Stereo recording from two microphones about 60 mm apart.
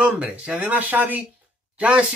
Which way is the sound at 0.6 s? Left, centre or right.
Right.